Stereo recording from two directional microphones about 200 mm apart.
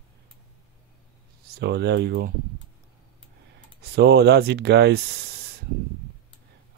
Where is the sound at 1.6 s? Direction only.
55° right (ahead or behind).